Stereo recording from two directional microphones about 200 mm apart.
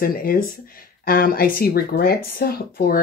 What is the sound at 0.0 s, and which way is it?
Speech, 45° left (ahead or behind).